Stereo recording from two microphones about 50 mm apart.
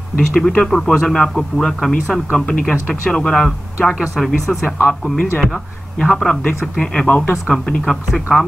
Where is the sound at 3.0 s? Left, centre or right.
Centre.